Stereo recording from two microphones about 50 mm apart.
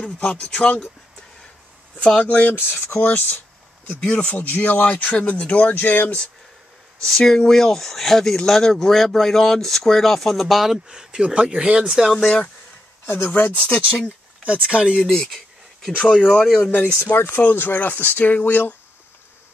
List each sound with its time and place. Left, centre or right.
0.2 s speech: centre
2.0 s speech: left
2.5 s speech: left
4.0 s speech: centre
4.3 s speech: left
7.0 s speech: centre
12.1 s speech: centre
13.0 s speech: left
13.6 s speech: left
15.0 s a sound: centre
16.2 s speech: centre
17.0 s speech: left